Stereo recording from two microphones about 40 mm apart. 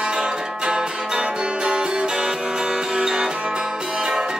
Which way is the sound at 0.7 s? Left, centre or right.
Right.